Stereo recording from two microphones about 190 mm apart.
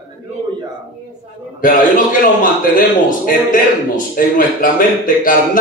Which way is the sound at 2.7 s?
45° left (ahead or behind).